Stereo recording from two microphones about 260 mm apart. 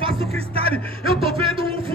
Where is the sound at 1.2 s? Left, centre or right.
Right.